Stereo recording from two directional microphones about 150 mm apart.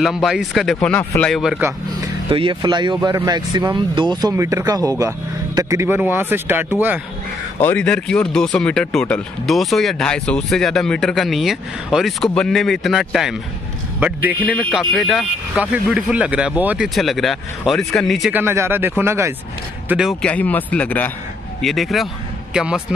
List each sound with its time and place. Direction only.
0.0 s speech: centre (ahead or behind)
2.2 s speech: 35° right (ahead or behind); by 7.0 s 15° right (ahead or behind)
7.6 s speech: 10° left (ahead or behind); by 14.5 s 10° right (ahead or behind)
14.5 s speech: centre (ahead or behind)
18.3 s speech: 15° right (ahead or behind)
19.9 s a man's voice: 5° right (ahead or behind)